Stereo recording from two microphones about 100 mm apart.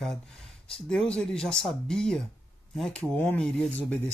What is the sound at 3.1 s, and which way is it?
Speech, 15° left (ahead or behind).